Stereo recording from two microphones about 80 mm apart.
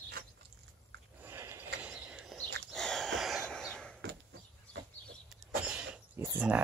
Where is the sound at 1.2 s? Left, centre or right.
Right.